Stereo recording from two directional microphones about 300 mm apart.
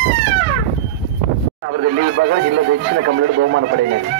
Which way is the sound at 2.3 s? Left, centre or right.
Right.